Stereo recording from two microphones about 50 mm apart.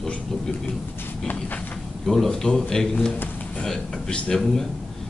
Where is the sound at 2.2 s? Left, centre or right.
Centre.